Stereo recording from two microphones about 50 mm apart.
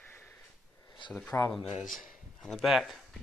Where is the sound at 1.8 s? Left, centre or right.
Centre.